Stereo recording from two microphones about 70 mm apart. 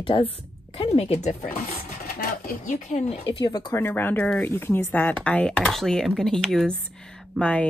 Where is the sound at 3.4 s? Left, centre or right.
Left.